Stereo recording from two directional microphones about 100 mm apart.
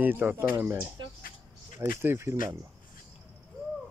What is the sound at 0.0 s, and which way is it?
Speech, 20° right (ahead or behind).